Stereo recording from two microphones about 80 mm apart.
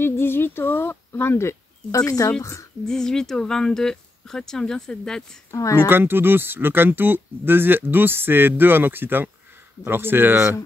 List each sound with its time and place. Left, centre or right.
0.0 s speech: left
2.0 s speech: left
2.8 s speech: centre
5.5 s speech: left
5.9 s speech: right